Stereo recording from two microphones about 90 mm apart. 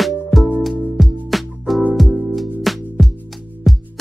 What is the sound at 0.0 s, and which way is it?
Music, centre (ahead or behind).